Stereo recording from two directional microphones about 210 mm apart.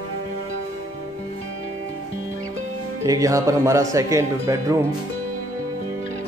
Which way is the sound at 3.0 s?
15° right (ahead or behind).